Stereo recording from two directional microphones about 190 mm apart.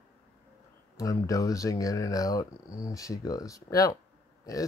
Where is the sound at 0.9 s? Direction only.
15° left (ahead or behind).